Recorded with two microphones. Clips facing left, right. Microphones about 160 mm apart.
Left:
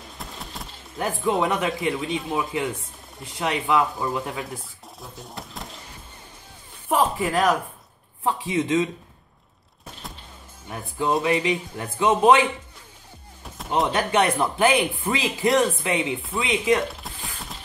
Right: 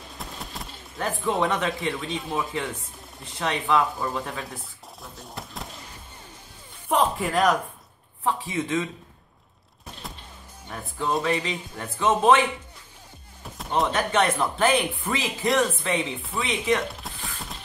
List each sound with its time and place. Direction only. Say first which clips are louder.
0.2 s a sound: even; centre (ahead or behind)
1.0 s a man's voice: left 2 dB; 10° left (ahead or behind)
5.0 s a sound: left 1 dB; centre (ahead or behind)
6.9 s speech: left 1 dB; centre (ahead or behind)
8.2 s a man's voice: left 3 dB; 15° left (ahead or behind)
10.0 s music: even; centre (ahead or behind)
10.7 s a man's voice: left 3 dB; 15° left (ahead or behind)
13.6 s door: left 1 dB; centre (ahead or behind)
13.9 s a man's voice: left 3 dB; 15° left (ahead or behind)
16.3 s a sound: left 3 dB; 10° left (ahead or behind)